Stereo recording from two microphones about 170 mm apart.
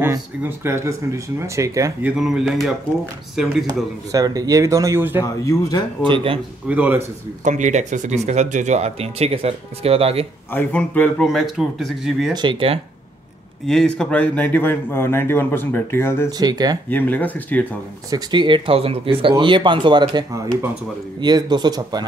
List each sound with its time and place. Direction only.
0.0 s speech: 15° right (ahead or behind)
2.1 s speech: centre (ahead or behind)
3.6 s speech: 20° right (ahead or behind)
5.2 s speech: 20° left (ahead or behind)
6.0 s speech: 30° right (ahead or behind)
6.7 s speech: 10° right (ahead or behind)
7.4 s speech: 45° right (ahead or behind)
10.5 s speech: 10° left (ahead or behind)
12.4 s speech: 30° right (ahead or behind)
13.7 s a man's voice: 5° left (ahead or behind)
16.3 s speech: 25° right (ahead or behind)
16.9 s a man's voice: 10° left (ahead or behind)
18.1 s speech: 25° right (ahead or behind)